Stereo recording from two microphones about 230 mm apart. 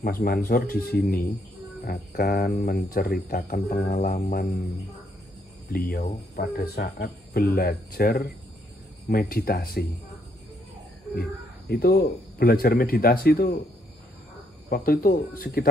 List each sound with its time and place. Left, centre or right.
0.0 s speech: left
11.1 s speech: left
14.7 s speech: left